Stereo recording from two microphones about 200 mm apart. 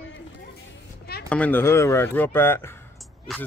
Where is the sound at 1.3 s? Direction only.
10° left (ahead or behind).